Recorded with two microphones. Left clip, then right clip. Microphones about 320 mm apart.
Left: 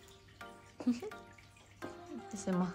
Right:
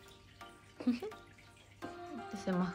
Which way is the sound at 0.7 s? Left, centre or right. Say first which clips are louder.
Even; centre.